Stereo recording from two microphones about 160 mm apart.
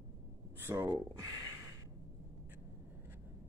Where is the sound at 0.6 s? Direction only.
15° right (ahead or behind).